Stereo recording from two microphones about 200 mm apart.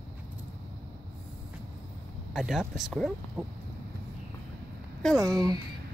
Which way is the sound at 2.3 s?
Centre (ahead or behind).